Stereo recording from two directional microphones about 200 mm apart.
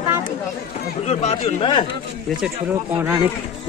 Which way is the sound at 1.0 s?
30° left (ahead or behind).